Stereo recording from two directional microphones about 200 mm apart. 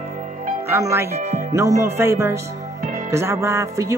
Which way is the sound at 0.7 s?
15° right (ahead or behind).